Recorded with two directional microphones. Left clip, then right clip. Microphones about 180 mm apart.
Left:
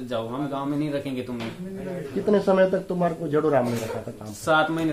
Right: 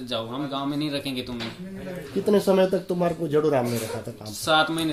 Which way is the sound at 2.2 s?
65° right (ahead or behind).